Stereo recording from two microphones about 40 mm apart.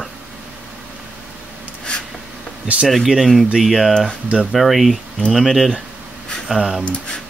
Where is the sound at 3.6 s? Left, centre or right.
Centre.